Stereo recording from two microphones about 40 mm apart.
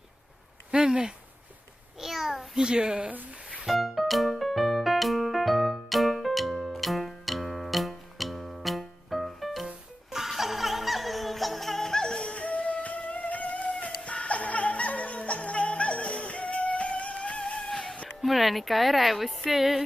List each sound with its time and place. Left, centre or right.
0.7 s speech: centre
2.0 s a sound: centre
2.5 s a child's voice: centre
3.6 s music: centre; by 17.6 s left
17.6 s music: centre